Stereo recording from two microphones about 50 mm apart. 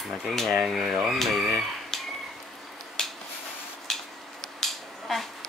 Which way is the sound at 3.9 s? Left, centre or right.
Centre.